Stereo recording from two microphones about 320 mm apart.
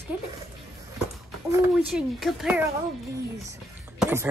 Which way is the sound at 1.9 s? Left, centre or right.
Centre.